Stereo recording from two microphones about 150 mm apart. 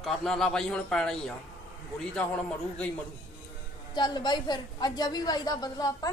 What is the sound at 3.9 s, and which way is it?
A woman's voice, 30° left (ahead or behind).